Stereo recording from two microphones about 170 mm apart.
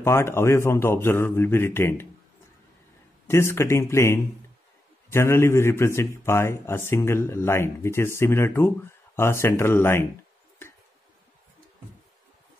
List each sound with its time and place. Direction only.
0.0 s a man's voice: 15° left (ahead or behind)
3.3 s a man's voice: 15° left (ahead or behind)